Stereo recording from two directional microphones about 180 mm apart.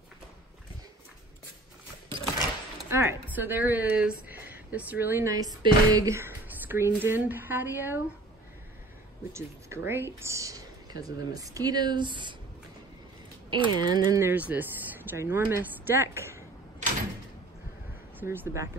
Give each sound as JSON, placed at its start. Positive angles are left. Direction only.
{"t": 2.9, "sound": "a woman's voice", "side_deg": -15}
{"t": 9.3, "sound": "speech", "side_deg": -15}
{"t": 13.5, "sound": "speech", "side_deg": -25}
{"t": 18.2, "sound": "a woman's voice", "side_deg": -15}